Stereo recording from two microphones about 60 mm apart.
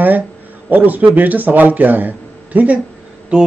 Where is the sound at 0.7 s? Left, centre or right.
Right.